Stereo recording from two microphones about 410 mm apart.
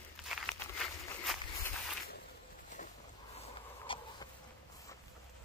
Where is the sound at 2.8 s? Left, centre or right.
Centre.